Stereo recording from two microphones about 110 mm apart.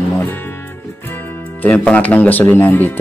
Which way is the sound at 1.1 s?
15° left (ahead or behind).